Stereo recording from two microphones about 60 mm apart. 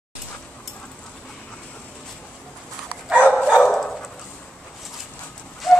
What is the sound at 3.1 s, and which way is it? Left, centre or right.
Dog, right.